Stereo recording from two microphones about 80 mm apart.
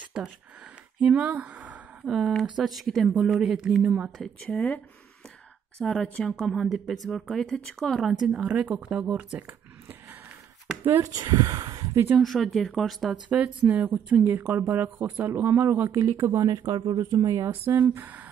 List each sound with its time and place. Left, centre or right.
0.2 s speech: centre
2.0 s speech: centre
3.8 s speech: centre
4.5 s speech: centre
8.5 s speech: right
11.0 s speech: right
11.9 s speech: right
12.2 s speech: centre
13.1 s speech: centre; by 16.5 s right
16.5 s speech: right
17.0 s speech: right
17.5 s speech: right